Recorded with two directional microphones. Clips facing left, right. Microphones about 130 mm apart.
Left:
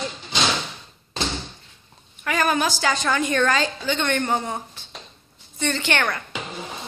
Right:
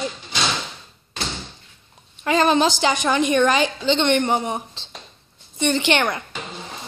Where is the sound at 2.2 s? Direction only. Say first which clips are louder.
Right 5 dB; 25° right (ahead or behind).